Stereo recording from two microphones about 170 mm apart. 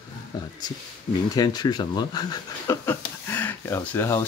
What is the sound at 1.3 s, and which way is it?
Speech, 20° left (ahead or behind).